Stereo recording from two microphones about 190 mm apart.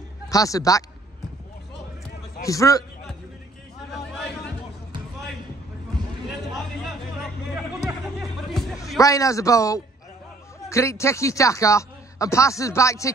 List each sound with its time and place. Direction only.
0.3 s a man's voice: 20° left (ahead or behind)
2.4 s a man's voice: 15° left (ahead or behind)
3.9 s a sound: centre (ahead or behind)
7.5 s music: centre (ahead or behind)
8.7 s a man's voice: 15° left (ahead or behind)